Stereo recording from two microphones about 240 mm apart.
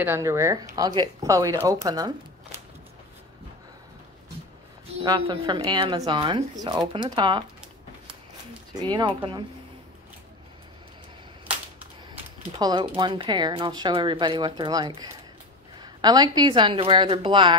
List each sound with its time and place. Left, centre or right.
0.0 s speech: centre
5.0 s speech: centre
8.7 s speech: centre
12.5 s speech: centre